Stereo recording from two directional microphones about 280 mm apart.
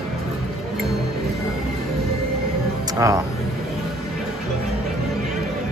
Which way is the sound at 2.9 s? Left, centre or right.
Centre.